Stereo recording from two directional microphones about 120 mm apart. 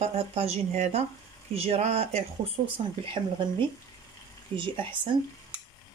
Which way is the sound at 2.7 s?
45° right (ahead or behind).